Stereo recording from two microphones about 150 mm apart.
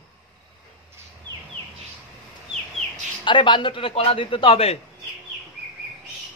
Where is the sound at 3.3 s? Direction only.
30° left (ahead or behind).